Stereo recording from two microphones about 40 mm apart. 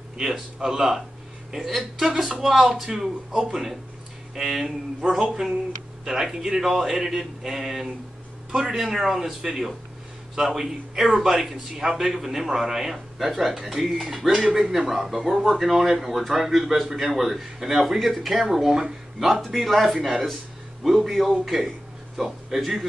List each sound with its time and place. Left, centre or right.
0.2 s a man's voice: centre
5.0 s a man's voice: centre
8.5 s a man's voice: right
8.8 s a man's voice: centre
19.1 s a man's voice: centre